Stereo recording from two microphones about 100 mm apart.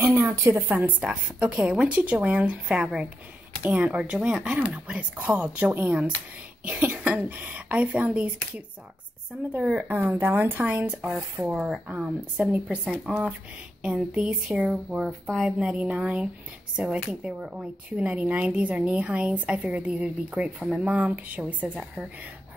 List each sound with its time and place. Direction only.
0.0 s speech: 25° right (ahead or behind)
11.5 s speech: 5° right (ahead or behind)
15.0 s speech: centre (ahead or behind); by 21.6 s 15° right (ahead or behind)